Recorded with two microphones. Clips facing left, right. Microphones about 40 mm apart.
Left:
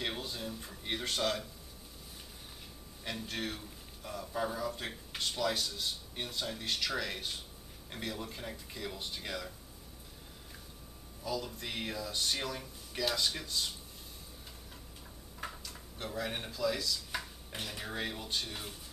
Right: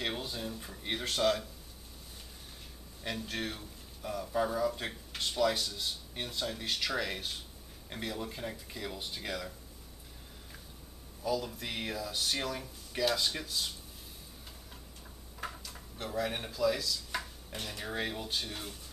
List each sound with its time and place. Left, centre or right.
0.0 s speech: centre
3.3 s speech: centre
11.2 s speech: centre
15.3 s a sound: centre
17.5 s speech: centre